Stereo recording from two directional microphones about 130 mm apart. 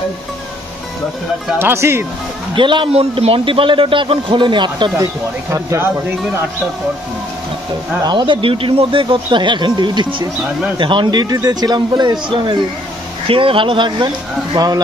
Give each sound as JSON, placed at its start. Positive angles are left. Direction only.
{"t": 1.6, "sound": "speech", "side_deg": -20}
{"t": 2.5, "sound": "a man's voice", "side_deg": -40}
{"t": 4.9, "sound": "speech", "side_deg": -25}
{"t": 8.0, "sound": "a man's voice", "side_deg": -35}